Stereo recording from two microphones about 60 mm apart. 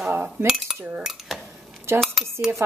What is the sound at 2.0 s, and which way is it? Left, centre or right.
Speech, centre.